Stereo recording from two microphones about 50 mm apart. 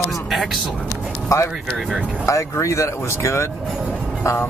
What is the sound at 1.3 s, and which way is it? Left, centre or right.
Speech, left.